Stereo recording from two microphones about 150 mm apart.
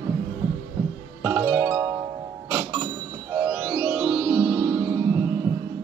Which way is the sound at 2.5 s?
15° right (ahead or behind).